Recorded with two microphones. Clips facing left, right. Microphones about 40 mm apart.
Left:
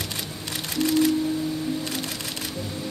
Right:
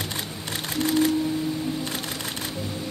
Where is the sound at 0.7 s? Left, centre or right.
Right.